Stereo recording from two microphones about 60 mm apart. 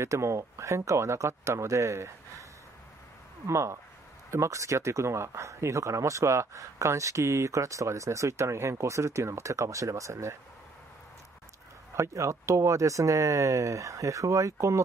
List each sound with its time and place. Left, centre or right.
0.0 s speech: right
3.4 s speech: right
12.0 s speech: right